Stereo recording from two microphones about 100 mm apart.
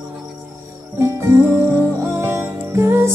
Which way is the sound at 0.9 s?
25° right (ahead or behind).